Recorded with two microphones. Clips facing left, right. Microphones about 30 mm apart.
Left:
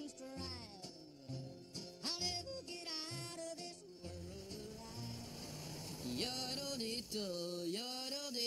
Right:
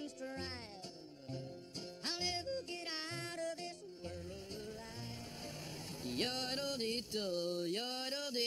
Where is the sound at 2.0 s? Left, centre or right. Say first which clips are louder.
Right 3 dB; right.